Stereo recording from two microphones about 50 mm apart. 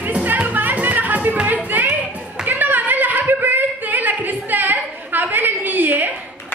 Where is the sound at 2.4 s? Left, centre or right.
Right.